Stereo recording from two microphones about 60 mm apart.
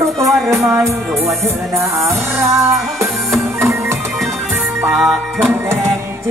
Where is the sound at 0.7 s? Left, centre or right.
Right.